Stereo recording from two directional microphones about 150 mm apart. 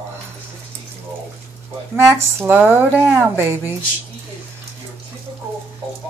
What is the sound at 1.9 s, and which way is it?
Speech, 15° right (ahead or behind).